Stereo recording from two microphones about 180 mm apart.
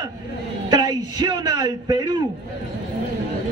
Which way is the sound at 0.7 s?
25° right (ahead or behind).